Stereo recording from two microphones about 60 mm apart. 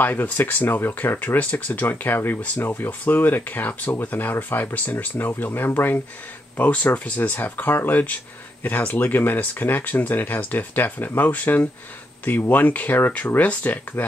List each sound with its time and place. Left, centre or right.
0.0 s speech: left